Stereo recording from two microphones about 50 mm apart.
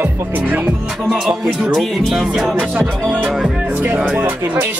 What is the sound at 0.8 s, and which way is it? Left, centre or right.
Music, centre.